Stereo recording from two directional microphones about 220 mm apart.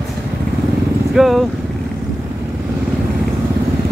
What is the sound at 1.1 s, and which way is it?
Vehicle, centre (ahead or behind).